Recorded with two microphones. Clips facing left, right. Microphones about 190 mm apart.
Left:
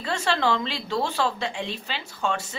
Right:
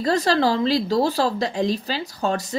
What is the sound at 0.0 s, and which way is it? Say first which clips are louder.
A woman's voice: right 6 dB; 35° right (ahead or behind).